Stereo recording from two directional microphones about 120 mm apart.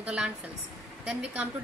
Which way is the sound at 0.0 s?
10° right (ahead or behind).